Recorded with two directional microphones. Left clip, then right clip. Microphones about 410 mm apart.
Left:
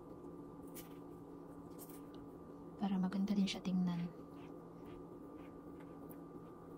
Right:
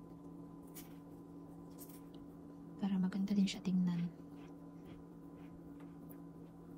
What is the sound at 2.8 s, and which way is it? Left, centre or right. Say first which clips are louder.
A woman's voice: even; centre.